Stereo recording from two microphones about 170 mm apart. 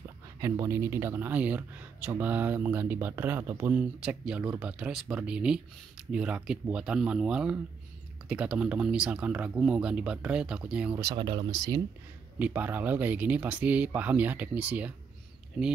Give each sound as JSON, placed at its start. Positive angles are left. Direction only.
{"t": 0.4, "sound": "speech", "side_deg": -15}
{"t": 11.0, "sound": "speech", "side_deg": -25}
{"t": 12.4, "sound": "speech", "side_deg": -10}